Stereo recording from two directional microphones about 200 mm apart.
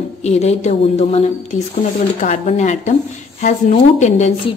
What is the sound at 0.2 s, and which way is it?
A woman's voice, 35° left (ahead or behind).